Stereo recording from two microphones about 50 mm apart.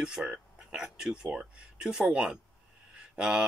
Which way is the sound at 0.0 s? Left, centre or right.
Centre.